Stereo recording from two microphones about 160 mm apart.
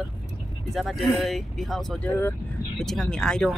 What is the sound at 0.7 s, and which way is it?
Speech, centre (ahead or behind).